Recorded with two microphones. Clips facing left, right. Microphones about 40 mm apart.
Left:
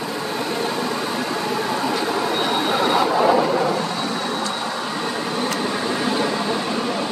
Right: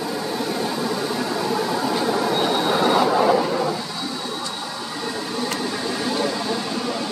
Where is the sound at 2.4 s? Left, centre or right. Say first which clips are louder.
Even; centre.